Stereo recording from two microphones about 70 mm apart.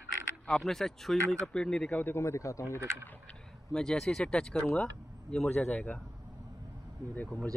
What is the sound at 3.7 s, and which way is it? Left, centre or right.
Speech, centre.